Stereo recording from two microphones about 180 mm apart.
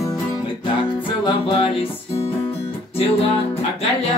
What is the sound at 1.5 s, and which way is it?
Music, 30° left (ahead or behind).